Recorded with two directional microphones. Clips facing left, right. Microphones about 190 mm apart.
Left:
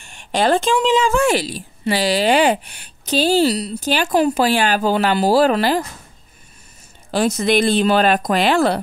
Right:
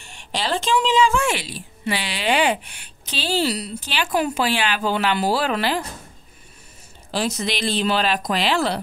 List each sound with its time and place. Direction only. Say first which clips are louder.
0.0 s a woman's voice: left 9 dB; 50° left (ahead or behind)
7.1 s speech: left 7 dB; 50° left (ahead or behind)